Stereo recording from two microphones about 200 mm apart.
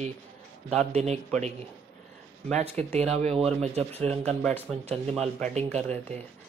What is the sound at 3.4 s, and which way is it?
Speech, 30° right (ahead or behind).